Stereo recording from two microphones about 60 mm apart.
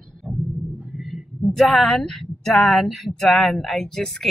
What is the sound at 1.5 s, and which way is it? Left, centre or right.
Speech, centre.